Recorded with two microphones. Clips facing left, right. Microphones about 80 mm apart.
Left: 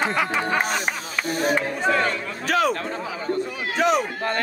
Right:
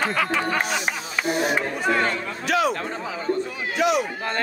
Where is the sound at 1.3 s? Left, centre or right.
Left.